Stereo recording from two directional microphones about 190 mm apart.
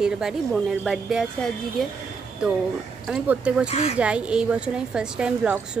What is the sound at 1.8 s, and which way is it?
Speech, centre (ahead or behind).